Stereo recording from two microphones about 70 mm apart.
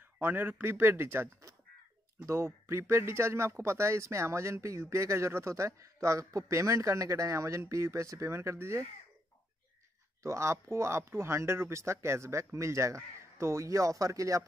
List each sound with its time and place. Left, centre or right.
0.2 s speech: right
10.2 s speech: right